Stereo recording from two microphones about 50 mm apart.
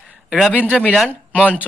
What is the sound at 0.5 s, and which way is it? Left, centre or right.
Speech, right.